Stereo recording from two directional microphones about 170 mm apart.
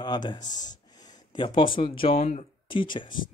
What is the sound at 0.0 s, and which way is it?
Speech, 25° left (ahead or behind).